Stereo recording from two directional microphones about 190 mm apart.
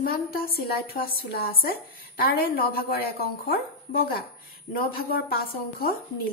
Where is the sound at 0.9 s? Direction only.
50° left (ahead or behind).